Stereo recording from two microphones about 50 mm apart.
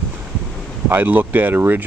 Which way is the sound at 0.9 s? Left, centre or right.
Right.